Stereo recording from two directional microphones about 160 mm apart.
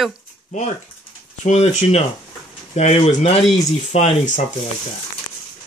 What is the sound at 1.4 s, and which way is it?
Speech, 45° left (ahead or behind).